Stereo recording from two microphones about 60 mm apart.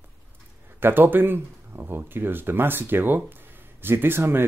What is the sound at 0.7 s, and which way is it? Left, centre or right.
Speech, right.